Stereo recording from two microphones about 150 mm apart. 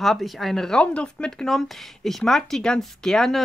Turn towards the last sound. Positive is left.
turn(degrees=5)  # may be behind; listen again after turning